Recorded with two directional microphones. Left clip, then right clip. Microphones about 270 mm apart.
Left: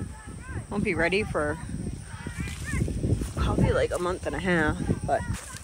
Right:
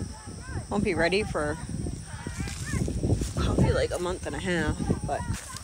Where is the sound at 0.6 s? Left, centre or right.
Centre.